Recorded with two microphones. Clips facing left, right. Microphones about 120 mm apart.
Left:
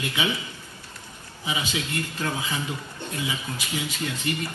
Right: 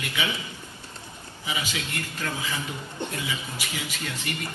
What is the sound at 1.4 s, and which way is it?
Speech, 25° left (ahead or behind).